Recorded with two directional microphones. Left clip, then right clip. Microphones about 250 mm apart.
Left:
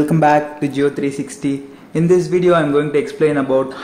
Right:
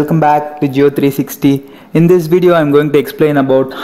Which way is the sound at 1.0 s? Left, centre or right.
Right.